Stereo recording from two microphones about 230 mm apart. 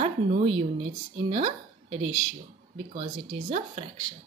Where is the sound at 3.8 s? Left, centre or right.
Right.